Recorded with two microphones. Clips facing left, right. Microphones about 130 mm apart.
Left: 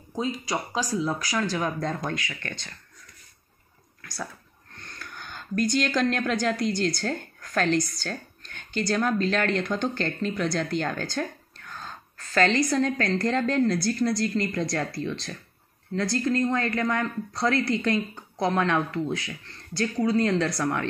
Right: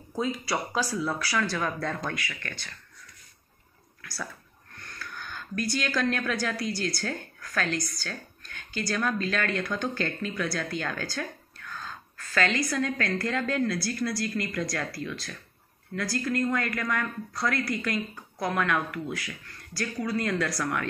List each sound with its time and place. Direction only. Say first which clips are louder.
0.1 s a woman's voice: left 1 dB; 15° left (ahead or behind)
4.8 s speech: right 1 dB; 20° left (ahead or behind)
8.8 s a woman's voice: left 4 dB; 20° left (ahead or behind)